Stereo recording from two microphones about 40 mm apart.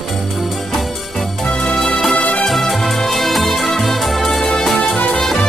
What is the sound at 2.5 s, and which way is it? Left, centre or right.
Music, centre.